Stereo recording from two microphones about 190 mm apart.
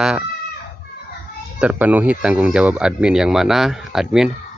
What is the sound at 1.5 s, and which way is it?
Speech, 5° right (ahead or behind).